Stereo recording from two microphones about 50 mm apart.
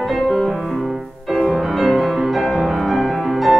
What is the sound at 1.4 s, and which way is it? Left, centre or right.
Music, centre.